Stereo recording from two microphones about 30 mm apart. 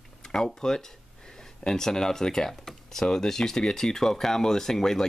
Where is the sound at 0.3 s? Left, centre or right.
Left.